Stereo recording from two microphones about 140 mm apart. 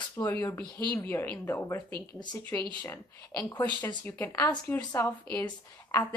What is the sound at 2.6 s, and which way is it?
Speech, 25° left (ahead or behind).